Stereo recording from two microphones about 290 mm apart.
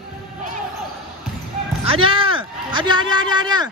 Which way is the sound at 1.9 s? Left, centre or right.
Centre.